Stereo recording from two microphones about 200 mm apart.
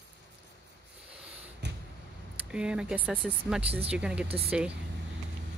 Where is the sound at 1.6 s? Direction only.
60° right (ahead or behind).